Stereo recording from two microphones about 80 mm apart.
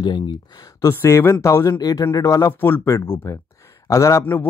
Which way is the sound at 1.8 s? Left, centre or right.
Left.